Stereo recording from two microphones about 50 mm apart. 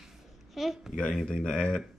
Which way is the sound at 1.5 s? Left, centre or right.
Centre.